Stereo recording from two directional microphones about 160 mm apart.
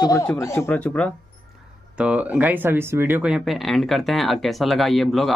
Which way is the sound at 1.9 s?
10° right (ahead or behind).